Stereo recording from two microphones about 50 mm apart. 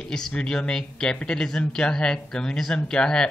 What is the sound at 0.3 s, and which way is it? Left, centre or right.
Speech, centre.